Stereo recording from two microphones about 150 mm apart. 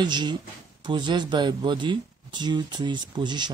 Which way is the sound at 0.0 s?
30° right (ahead or behind).